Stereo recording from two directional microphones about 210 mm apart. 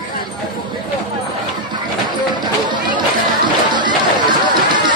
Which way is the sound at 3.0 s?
20° right (ahead or behind).